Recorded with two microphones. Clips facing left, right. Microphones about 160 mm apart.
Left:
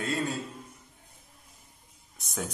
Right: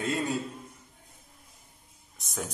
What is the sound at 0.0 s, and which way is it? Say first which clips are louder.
Speech: right 1 dB; 20° right (ahead or behind).